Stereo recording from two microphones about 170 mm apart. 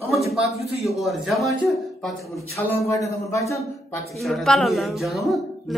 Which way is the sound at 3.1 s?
15° left (ahead or behind).